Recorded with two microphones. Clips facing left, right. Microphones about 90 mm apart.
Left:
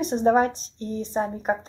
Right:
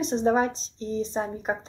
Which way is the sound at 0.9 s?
25° right (ahead or behind).